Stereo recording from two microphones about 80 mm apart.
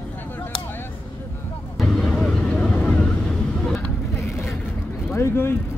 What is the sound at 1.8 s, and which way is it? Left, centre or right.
Vehicle, centre.